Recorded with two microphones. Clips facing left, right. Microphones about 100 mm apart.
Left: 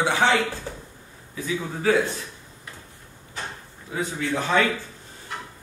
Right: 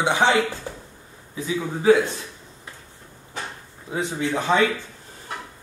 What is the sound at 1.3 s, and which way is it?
Speech, 20° right (ahead or behind).